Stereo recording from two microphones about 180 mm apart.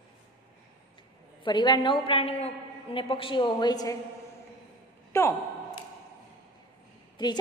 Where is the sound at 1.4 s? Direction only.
25° left (ahead or behind).